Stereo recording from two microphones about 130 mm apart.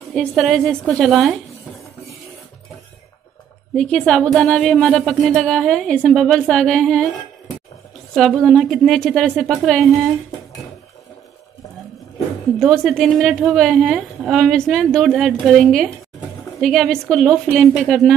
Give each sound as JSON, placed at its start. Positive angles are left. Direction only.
{"t": 0.1, "sound": "speech", "side_deg": 5}
{"t": 3.7, "sound": "speech", "side_deg": 5}
{"t": 8.1, "sound": "speech", "side_deg": 0}
{"t": 12.5, "sound": "speech", "side_deg": 0}